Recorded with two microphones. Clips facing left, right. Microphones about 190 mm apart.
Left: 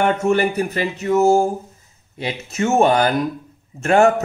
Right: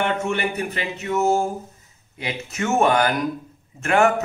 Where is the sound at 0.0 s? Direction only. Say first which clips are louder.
Left 6 dB; 40° left (ahead or behind).